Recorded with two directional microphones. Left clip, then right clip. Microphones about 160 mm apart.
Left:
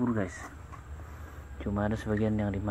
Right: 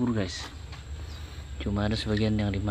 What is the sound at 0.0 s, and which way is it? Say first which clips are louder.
Speech: right 1 dB; 15° right (ahead or behind).